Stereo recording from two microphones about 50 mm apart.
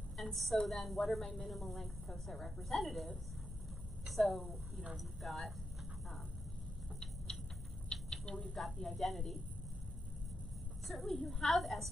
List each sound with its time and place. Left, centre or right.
0.2 s a woman's voice: centre
4.1 s a woman's voice: centre
7.9 s a sound: centre
8.7 s a woman's voice: centre
10.9 s a woman's voice: centre